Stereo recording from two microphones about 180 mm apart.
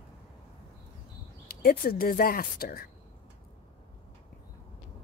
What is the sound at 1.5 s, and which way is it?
Speech, 55° left (ahead or behind).